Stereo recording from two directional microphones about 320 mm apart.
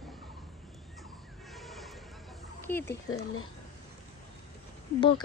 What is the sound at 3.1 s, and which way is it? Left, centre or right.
Speech, left.